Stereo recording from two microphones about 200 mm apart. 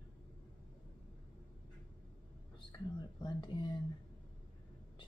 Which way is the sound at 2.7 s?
20° left (ahead or behind).